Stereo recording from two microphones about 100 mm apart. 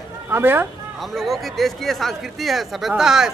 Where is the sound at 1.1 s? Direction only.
Centre (ahead or behind).